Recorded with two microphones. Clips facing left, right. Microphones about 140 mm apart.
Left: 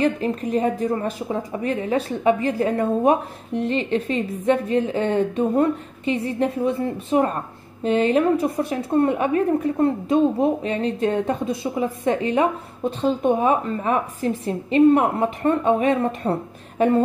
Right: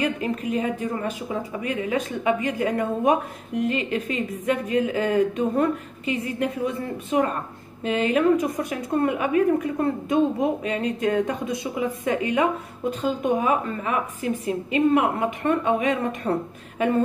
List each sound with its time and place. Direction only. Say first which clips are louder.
0.0 s a woman's voice: left 4 dB; 35° left (ahead or behind)